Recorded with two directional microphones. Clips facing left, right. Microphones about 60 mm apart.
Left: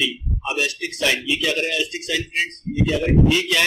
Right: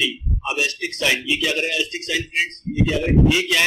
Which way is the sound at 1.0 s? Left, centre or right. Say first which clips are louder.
Even; centre.